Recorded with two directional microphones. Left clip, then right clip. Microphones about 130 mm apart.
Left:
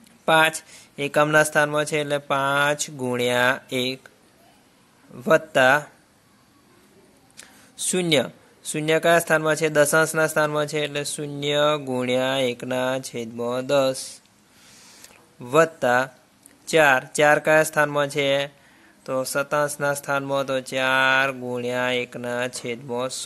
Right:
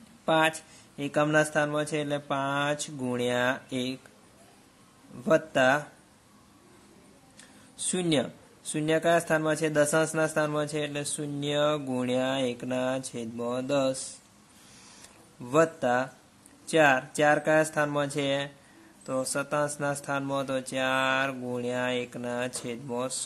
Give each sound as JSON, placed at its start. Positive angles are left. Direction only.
{"t": 0.2, "sound": "speech", "side_deg": 30}
{"t": 5.2, "sound": "speech", "side_deg": 25}
{"t": 7.3, "sound": "speech", "side_deg": 25}
{"t": 15.4, "sound": "speech", "side_deg": 25}